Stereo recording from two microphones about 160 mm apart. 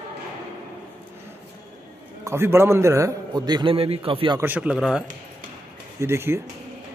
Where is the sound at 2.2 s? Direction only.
15° right (ahead or behind); by 4.4 s 35° right (ahead or behind).